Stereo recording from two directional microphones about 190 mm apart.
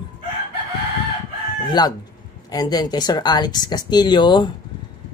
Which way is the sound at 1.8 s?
20° left (ahead or behind).